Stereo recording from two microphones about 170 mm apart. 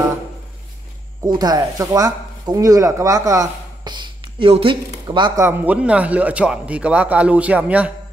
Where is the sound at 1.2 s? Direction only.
25° right (ahead or behind).